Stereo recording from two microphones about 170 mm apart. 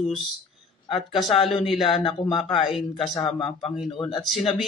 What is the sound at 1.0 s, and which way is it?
A man's voice, centre (ahead or behind).